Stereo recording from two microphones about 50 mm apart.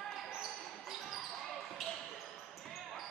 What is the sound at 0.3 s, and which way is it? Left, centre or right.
Basketball bounce, centre.